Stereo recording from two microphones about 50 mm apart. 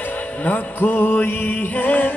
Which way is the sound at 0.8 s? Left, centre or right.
Left.